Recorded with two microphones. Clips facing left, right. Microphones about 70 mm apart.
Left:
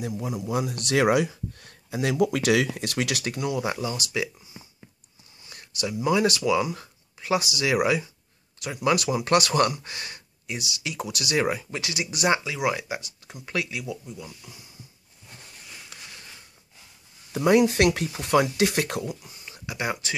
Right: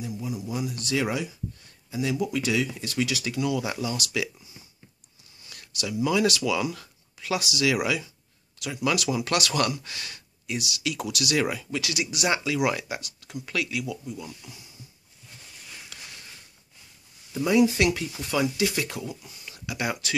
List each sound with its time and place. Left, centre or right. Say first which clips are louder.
0.0 s speech: left 2 dB; left
3.5 s speech: left 1 dB; left
12.3 s speech: left 1 dB; left
14.1 s speech: right 2 dB; centre
17.3 s speech: left 2 dB; left
19.4 s speech: even; left